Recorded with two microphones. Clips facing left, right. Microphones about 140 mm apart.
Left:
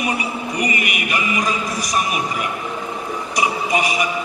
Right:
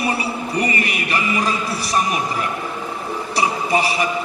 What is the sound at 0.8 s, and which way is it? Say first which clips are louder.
A man's voice: right 1 dB; 30° right (ahead or behind).